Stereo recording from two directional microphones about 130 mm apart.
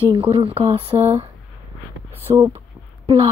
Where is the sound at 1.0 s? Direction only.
55° right (ahead or behind).